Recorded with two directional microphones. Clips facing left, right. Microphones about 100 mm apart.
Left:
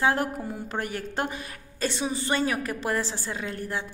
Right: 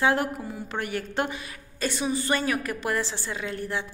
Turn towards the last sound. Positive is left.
turn(degrees=40)  # may be behind; listen again after turning